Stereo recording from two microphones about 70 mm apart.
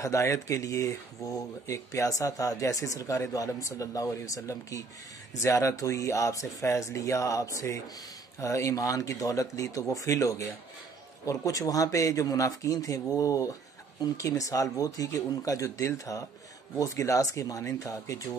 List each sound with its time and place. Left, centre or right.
0.0 s a man's voice: left